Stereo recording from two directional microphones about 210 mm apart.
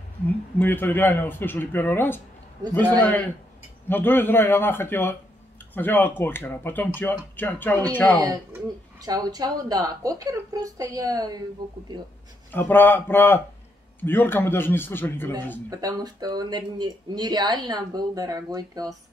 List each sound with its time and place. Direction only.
0.6 s speech: 10° left (ahead or behind)
9.0 s a woman's voice: 20° right (ahead or behind)
12.5 s speech: 10° left (ahead or behind)
15.7 s speech: 20° right (ahead or behind)